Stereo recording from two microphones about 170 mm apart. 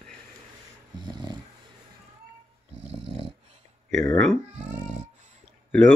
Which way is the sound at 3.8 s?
5° left (ahead or behind).